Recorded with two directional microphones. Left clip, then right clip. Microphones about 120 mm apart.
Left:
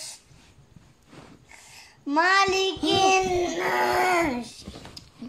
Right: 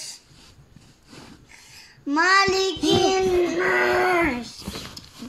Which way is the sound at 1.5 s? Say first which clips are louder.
Right 1 dB; 25° left (ahead or behind).